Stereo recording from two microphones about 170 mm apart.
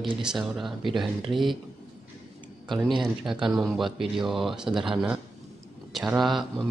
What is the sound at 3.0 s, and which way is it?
Speech, centre (ahead or behind).